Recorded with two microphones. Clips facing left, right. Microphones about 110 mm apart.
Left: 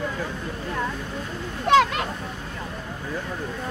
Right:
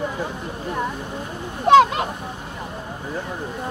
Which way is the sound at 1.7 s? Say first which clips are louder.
Right 5 dB; 20° right (ahead or behind).